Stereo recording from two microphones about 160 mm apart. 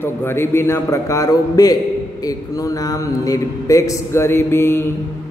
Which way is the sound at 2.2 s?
20° left (ahead or behind).